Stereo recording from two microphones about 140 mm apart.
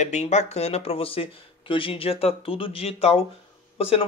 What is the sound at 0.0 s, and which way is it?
Speech, 55° left (ahead or behind).